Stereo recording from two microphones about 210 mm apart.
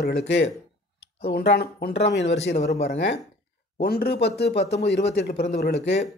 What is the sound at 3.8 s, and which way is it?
Speech, 50° left (ahead or behind).